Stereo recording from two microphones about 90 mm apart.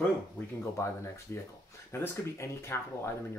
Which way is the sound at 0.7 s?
30° left (ahead or behind).